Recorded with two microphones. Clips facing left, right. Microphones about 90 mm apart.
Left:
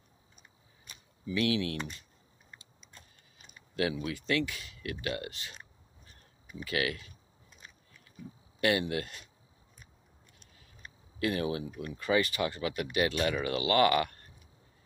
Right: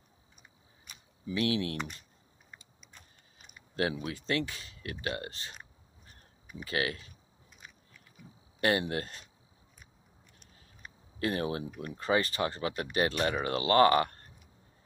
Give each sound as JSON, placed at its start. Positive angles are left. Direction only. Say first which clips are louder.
{"t": 1.2, "sound": "speech", "louder": "left 1 dB", "side_deg": -30}
{"t": 4.0, "sound": "speech", "louder": "left 1 dB", "side_deg": -30}
{"t": 6.6, "sound": "speech", "louder": "even", "side_deg": -30}
{"t": 8.5, "sound": "speech", "louder": "even", "side_deg": -35}
{"t": 11.1, "sound": "speech", "louder": "left 1 dB", "side_deg": -35}